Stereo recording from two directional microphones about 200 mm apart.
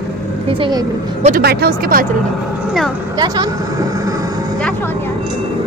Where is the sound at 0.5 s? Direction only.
25° right (ahead or behind).